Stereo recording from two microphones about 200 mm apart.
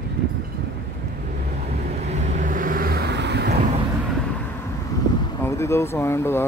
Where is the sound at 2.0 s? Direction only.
35° right (ahead or behind); by 3.5 s 55° right (ahead or behind).